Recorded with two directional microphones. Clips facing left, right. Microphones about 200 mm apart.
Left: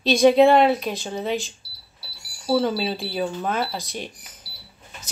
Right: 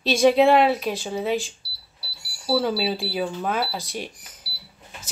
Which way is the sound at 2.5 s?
5° right (ahead or behind).